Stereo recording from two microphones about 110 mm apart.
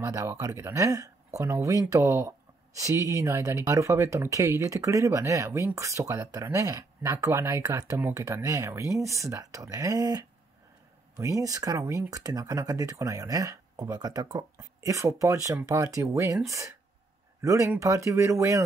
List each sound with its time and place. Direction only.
0.0 s speech: 25° right (ahead or behind)